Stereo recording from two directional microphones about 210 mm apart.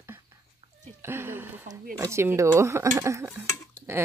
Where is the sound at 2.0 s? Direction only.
15° right (ahead or behind).